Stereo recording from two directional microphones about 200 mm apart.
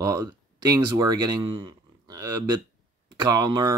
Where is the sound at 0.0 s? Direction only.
20° right (ahead or behind).